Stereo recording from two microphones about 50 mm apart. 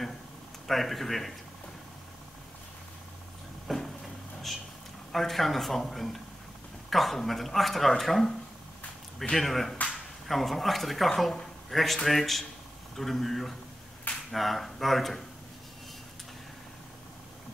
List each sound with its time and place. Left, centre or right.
0.7 s speech: centre
3.6 s vehicle: centre
5.1 s speech: centre